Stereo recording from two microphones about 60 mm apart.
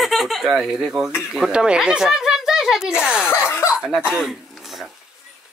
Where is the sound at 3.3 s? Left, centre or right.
Left.